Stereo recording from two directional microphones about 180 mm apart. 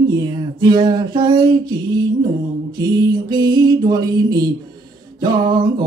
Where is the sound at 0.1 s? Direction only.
25° right (ahead or behind).